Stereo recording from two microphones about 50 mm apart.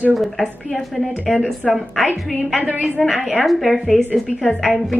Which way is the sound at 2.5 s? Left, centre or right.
Right.